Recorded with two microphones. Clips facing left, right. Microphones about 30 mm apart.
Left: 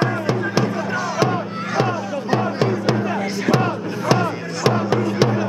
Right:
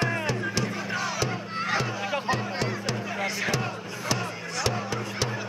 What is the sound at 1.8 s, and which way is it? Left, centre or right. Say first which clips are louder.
Music: left 5 dB; left.